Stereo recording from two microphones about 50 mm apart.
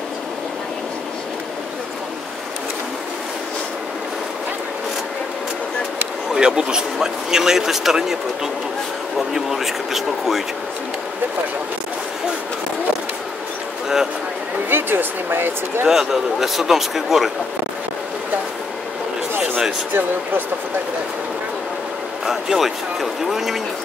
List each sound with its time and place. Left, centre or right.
6.3 s a man's voice: centre
9.3 s speech: centre
14.7 s speech: right
15.9 s a man's voice: centre
22.2 s speech: centre